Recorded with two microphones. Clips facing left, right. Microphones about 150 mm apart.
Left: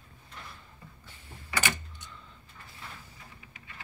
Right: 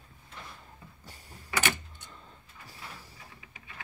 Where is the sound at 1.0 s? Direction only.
40° right (ahead or behind).